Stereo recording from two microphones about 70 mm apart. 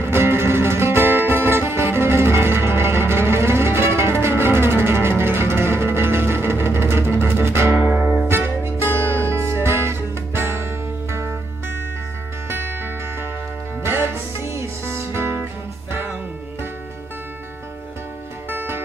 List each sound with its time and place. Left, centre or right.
0.0 s music: right
12.4 s music: right
18.5 s music: right